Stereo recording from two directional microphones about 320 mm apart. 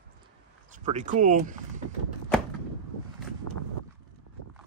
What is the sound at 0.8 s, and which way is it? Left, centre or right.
Speech, right.